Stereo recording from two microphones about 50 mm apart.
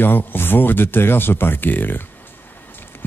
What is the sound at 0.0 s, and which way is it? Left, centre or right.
Speech, left.